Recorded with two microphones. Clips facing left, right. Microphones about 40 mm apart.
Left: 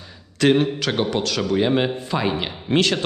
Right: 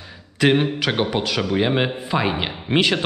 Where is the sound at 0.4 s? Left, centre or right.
Centre.